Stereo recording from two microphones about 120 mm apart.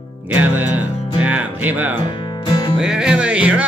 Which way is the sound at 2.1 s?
40° left (ahead or behind).